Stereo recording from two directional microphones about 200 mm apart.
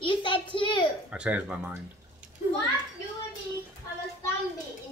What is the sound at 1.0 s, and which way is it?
Speech, 5° right (ahead or behind).